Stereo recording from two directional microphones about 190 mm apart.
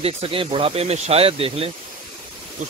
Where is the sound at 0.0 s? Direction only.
30° right (ahead or behind).